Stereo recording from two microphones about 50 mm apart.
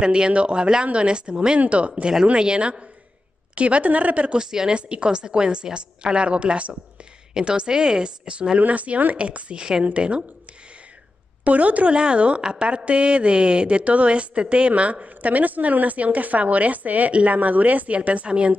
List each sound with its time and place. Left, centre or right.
0.0 s a woman's voice: centre
4.4 s a woman's voice: centre
11.4 s a woman's voice: right